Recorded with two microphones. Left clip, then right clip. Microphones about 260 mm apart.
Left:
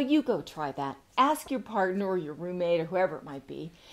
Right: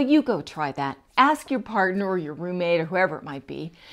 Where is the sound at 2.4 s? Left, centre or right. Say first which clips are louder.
Right 5 dB; right.